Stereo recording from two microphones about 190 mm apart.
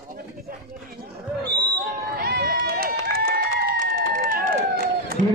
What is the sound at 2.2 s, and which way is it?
Run, 55° right (ahead or behind).